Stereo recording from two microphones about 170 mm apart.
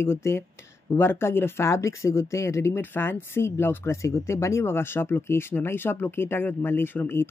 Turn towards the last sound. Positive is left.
turn(degrees=15)  # may be behind; listen again after turning